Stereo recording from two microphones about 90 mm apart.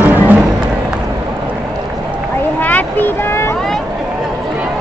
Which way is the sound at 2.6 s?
20° left (ahead or behind).